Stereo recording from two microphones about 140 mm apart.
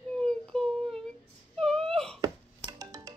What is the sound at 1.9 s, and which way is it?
Wail, 5° left (ahead or behind).